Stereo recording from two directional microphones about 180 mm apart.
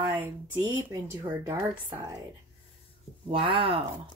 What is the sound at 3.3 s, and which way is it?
Speech, 30° right (ahead or behind).